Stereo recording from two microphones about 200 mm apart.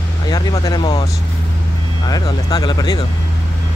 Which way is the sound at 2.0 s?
20° left (ahead or behind).